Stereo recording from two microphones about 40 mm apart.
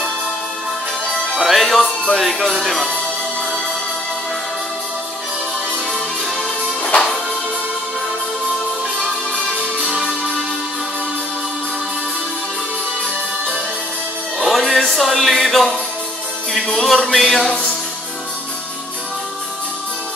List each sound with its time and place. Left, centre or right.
1.4 s music: centre
2.5 s speech: centre
6.8 s music: left
14.4 s music: centre